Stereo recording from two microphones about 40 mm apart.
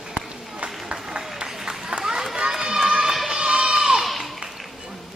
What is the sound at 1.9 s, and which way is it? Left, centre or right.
Run, centre.